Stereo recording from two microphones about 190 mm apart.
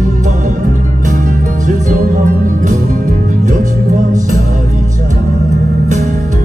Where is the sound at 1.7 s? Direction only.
45° right (ahead or behind).